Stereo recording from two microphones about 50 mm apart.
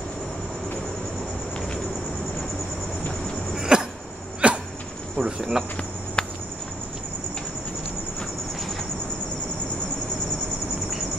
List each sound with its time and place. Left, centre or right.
3.5 s a sound: centre
5.1 s speech: centre
6.2 s cricket: left